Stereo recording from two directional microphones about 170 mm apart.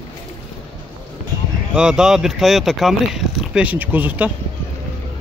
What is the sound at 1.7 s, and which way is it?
Speech, 5° right (ahead or behind).